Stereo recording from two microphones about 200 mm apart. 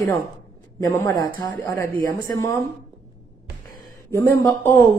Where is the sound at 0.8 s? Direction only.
15° left (ahead or behind).